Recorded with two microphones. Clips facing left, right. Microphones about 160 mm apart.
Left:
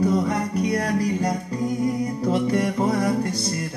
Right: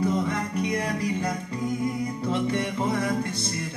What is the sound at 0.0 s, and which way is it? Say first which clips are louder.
Music: left 4 dB; 35° left (ahead or behind).